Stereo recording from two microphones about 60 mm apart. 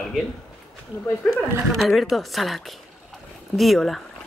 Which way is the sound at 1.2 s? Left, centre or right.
Centre.